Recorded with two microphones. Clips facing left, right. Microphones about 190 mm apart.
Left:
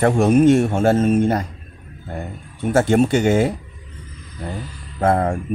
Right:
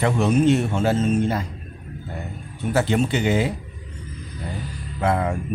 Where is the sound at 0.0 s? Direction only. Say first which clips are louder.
Left 5 dB; 50° left (ahead or behind).